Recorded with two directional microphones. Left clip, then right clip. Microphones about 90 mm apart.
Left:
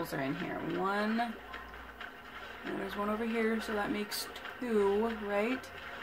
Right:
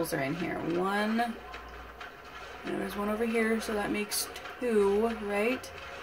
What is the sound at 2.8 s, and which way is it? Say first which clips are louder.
Speech: right 3 dB; 5° right (ahead or behind).